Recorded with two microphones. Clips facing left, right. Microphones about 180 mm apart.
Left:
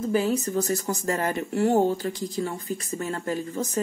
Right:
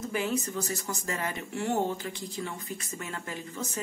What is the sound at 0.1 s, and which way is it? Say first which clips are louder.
Speech: left 7 dB; 35° left (ahead or behind).